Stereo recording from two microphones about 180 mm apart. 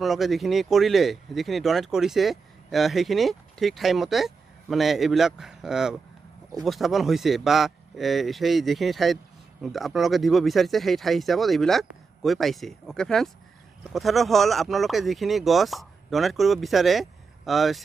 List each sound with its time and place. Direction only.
0.0 s speech: centre (ahead or behind)